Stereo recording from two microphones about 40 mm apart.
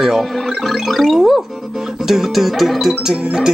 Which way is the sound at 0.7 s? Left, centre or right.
Centre.